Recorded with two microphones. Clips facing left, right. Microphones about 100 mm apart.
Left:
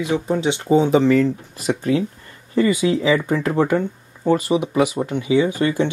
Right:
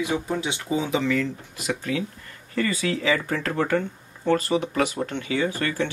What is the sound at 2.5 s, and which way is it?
Speech, 20° left (ahead or behind).